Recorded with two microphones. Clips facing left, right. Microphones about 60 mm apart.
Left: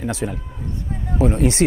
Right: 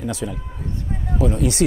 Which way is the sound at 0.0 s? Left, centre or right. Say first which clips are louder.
Left 2 dB; left.